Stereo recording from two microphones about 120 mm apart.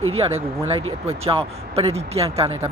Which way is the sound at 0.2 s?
55° right (ahead or behind).